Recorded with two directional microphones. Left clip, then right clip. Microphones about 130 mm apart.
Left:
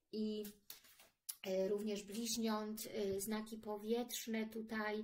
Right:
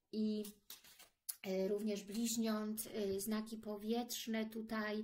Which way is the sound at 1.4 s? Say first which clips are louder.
Even; 35° right (ahead or behind).